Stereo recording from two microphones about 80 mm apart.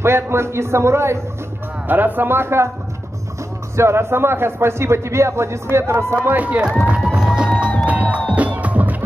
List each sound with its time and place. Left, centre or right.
0.0 s a man's voice: right
1.9 s speech: right
3.7 s a man's voice: right
6.2 s speech: right
7.1 s music: centre